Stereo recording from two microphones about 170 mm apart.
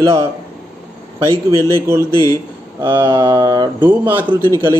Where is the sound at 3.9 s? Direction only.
10° right (ahead or behind).